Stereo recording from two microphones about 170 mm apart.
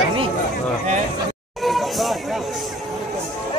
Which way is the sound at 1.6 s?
Centre (ahead or behind).